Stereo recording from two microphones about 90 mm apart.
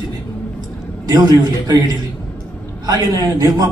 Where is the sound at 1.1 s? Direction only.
50° right (ahead or behind).